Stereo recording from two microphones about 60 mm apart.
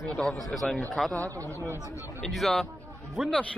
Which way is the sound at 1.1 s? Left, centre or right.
Right.